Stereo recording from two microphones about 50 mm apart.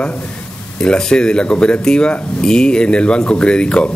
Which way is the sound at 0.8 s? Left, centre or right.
Centre.